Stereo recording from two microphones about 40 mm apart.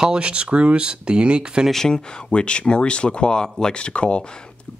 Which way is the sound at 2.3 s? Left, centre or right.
Left.